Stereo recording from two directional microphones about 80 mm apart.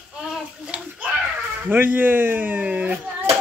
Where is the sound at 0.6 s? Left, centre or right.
Centre.